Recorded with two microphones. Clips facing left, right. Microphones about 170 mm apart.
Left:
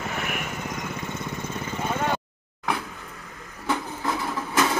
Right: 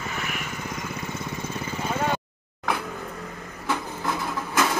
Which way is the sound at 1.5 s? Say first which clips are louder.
Left 1 dB; 5° right (ahead or behind).